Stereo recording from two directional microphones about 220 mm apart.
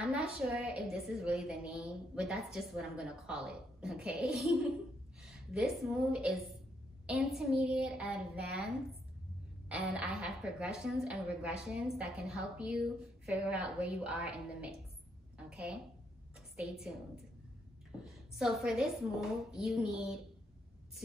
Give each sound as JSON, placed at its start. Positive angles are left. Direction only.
{"t": 0.0, "sound": "a woman's voice", "side_deg": -5}
{"t": 9.7, "sound": "a woman's voice", "side_deg": -5}
{"t": 15.3, "sound": "a sound", "side_deg": -5}
{"t": 18.3, "sound": "a woman's voice", "side_deg": 0}